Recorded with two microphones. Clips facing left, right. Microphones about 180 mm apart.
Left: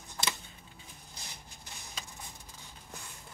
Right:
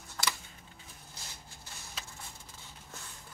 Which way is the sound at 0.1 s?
20° left (ahead or behind).